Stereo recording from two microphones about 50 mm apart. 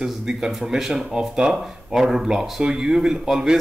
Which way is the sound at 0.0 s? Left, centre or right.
Centre.